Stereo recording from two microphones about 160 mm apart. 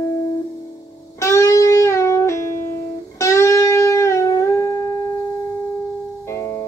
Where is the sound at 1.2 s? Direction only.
20° left (ahead or behind).